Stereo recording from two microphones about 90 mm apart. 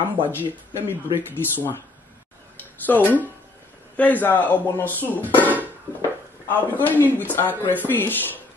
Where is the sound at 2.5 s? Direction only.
20° left (ahead or behind).